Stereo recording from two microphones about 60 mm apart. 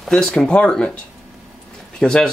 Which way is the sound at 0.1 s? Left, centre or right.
Centre.